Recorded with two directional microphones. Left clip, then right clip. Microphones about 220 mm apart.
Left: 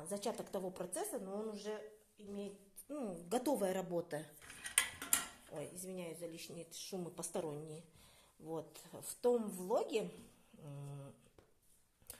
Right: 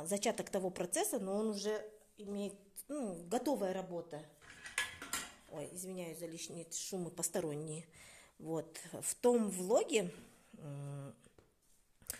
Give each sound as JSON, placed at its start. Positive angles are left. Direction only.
{"t": 0.0, "sound": "speech", "side_deg": -40}
{"t": 2.9, "sound": "a woman's voice", "side_deg": -25}
{"t": 3.9, "sound": "speech", "side_deg": 25}
{"t": 5.5, "sound": "speech", "side_deg": -20}
{"t": 12.1, "sound": "a sound", "side_deg": -45}